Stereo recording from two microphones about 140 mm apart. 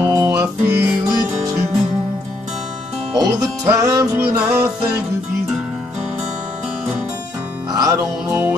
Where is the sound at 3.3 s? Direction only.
25° right (ahead or behind).